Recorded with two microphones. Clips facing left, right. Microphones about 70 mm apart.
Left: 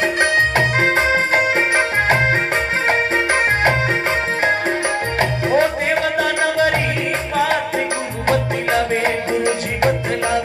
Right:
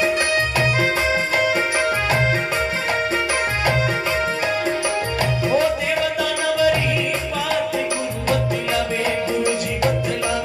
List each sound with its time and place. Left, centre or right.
0.0 s music: left
5.2 s music: left
8.3 s music: left